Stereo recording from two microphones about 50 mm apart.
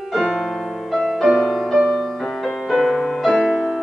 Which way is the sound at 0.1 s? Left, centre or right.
Centre.